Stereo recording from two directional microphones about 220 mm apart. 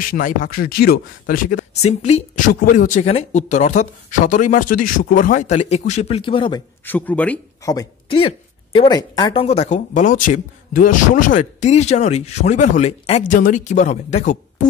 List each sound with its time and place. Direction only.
0.0 s speech: 40° left (ahead or behind); by 6.6 s 20° left (ahead or behind)
6.8 s speech: 10° left (ahead or behind); by 14.7 s 35° left (ahead or behind)